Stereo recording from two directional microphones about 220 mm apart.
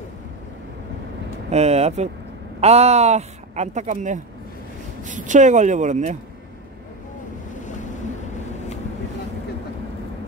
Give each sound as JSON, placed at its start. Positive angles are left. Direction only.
{"t": 1.5, "sound": "speech", "side_deg": -30}
{"t": 7.5, "sound": "boat", "side_deg": 35}